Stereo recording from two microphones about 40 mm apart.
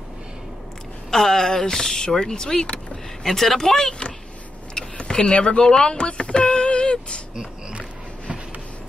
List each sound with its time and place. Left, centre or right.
1.1 s speech: centre
3.3 s speech: centre
4.7 s power windows: centre